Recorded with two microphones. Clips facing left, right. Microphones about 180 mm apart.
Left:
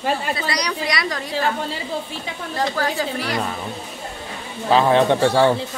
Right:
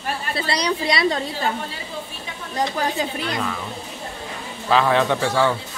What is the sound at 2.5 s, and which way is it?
Speech, 20° right (ahead or behind).